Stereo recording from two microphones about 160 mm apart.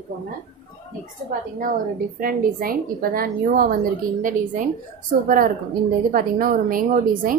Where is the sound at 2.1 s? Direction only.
60° right (ahead or behind).